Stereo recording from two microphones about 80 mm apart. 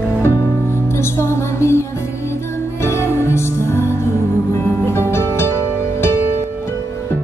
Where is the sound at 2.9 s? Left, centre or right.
Left.